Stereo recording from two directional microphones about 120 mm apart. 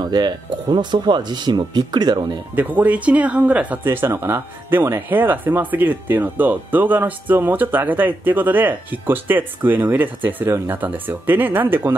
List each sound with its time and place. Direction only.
0.0 s speech: 35° right (ahead or behind)
2.5 s speech: 15° right (ahead or behind)